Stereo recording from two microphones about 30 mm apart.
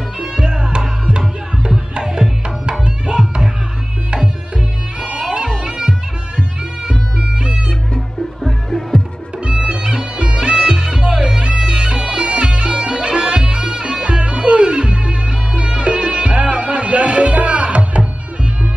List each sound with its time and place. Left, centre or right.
0.2 s music: right
2.0 s music: centre
3.1 s music: right
5.2 s bagpipes: right
6.9 s guitar: right
9.4 s music: right